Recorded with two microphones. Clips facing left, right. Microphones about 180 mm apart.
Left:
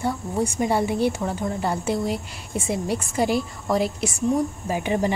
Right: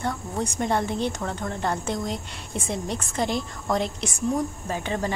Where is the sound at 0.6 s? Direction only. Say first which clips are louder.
Left 3 dB; 10° left (ahead or behind).